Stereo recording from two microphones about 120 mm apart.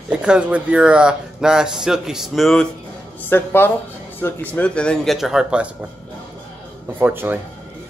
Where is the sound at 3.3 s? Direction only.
15° left (ahead or behind); by 5.7 s 5° right (ahead or behind).